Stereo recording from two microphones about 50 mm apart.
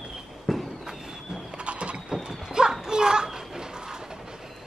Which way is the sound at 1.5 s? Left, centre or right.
Right.